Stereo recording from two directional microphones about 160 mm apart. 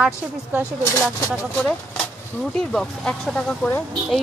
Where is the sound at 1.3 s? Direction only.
5° left (ahead or behind).